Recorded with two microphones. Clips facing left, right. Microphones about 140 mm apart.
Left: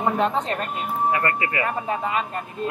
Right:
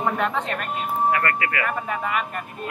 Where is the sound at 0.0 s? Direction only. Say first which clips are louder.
Left 2 dB; 30° left (ahead or behind).